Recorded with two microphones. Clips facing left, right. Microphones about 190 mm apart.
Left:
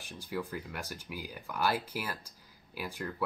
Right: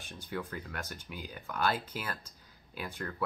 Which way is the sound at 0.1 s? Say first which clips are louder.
Left 2 dB; 5° left (ahead or behind).